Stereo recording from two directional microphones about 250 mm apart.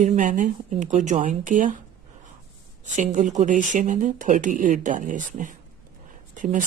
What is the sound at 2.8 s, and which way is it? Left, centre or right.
Speech, right.